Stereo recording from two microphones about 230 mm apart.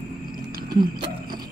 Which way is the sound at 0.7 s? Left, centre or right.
Centre.